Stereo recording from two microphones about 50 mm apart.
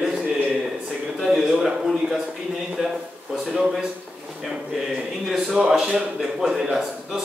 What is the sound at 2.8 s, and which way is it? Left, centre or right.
Speech, centre.